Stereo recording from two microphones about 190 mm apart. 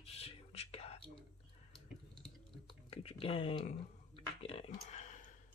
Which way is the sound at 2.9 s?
30° left (ahead or behind).